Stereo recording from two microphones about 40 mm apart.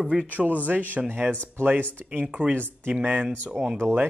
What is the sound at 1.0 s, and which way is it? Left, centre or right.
Speech, right.